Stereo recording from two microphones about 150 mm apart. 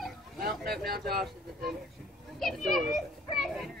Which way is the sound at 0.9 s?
90° right.